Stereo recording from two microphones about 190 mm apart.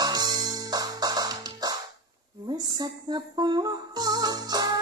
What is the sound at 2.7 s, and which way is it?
Music, 20° right (ahead or behind).